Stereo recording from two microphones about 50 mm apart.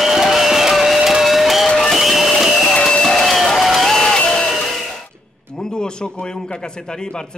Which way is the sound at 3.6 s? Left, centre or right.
Centre.